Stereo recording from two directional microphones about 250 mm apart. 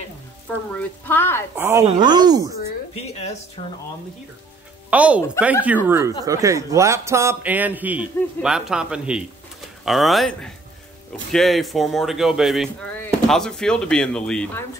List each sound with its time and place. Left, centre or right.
0.7 s speech: centre
1.6 s a man's voice: centre
2.9 s speech: left
4.9 s a man's voice: centre